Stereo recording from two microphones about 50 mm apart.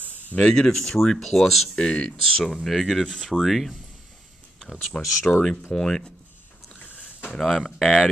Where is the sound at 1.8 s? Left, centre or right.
Centre.